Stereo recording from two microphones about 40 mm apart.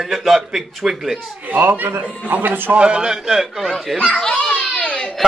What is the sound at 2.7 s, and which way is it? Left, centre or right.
A man's voice, right.